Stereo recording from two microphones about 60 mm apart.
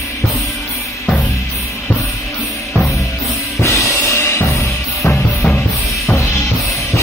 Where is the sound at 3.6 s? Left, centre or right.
Left.